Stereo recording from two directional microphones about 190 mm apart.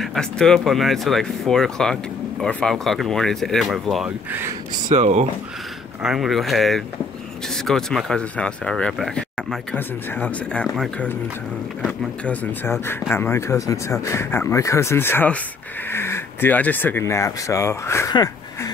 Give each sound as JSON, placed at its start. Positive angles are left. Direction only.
{"t": 0.0, "sound": "speech", "side_deg": 0}
{"t": 4.8, "sound": "speech", "side_deg": -35}
{"t": 6.0, "sound": "speech", "side_deg": 0}
{"t": 13.1, "sound": "speech", "side_deg": 10}